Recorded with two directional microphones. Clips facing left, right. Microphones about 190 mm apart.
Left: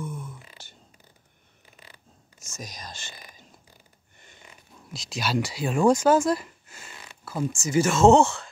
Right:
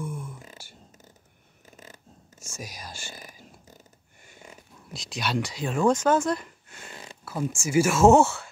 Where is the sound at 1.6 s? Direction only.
45° right (ahead or behind).